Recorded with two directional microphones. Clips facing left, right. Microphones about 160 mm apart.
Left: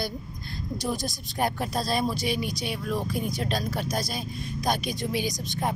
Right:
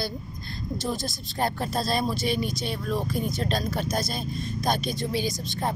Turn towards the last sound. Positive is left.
turn(degrees=15)  # may be behind; listen again after turning